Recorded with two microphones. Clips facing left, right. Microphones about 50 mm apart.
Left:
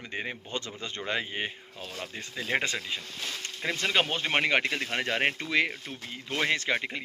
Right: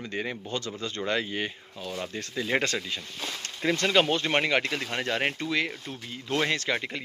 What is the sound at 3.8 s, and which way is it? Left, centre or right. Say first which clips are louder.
Speech: right 3 dB; left.